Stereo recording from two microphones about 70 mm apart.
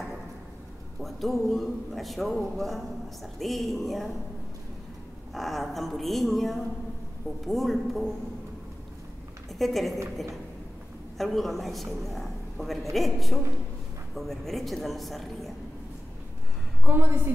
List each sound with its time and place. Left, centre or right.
1.0 s a man's voice: centre
5.3 s a man's voice: centre
9.5 s a woman's voice: centre
11.1 s a man's voice: centre
16.8 s a woman's voice: right